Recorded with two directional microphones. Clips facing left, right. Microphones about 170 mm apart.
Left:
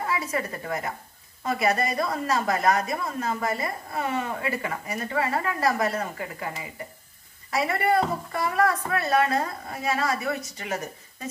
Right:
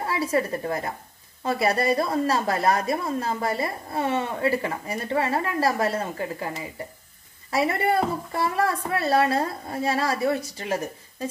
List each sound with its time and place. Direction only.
0.1 s a woman's voice: 30° right (ahead or behind)
7.5 s a woman's voice: 25° right (ahead or behind)